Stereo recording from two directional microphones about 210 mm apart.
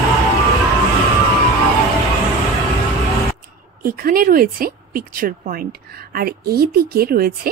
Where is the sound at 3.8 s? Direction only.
45° right (ahead or behind).